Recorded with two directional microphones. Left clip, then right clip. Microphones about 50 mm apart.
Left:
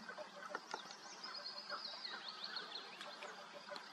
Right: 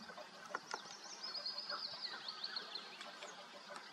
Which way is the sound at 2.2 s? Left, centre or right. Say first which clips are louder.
Right 2 dB; right.